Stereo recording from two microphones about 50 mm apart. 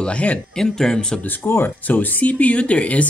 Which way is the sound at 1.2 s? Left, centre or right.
Left.